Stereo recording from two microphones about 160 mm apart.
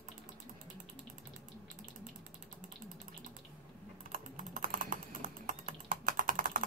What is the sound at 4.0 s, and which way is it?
Typing, 60° right (ahead or behind).